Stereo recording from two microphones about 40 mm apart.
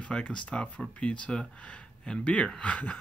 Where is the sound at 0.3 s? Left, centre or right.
Left.